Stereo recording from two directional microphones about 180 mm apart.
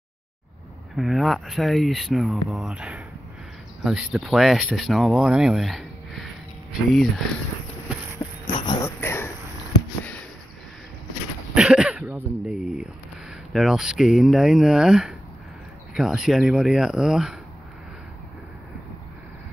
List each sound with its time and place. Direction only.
0.9 s speech: centre (ahead or behind)
8.2 s a sound: 15° left (ahead or behind)
8.5 s dog: 25° left (ahead or behind)
11.5 s throat clearing: 5° right (ahead or behind)
13.5 s speech: centre (ahead or behind)